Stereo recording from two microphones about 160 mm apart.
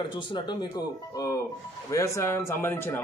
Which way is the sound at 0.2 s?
30° left (ahead or behind).